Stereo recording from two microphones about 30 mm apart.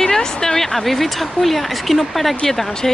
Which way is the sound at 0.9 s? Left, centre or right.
Centre.